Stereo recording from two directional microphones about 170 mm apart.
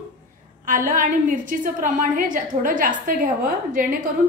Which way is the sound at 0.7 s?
50° right (ahead or behind).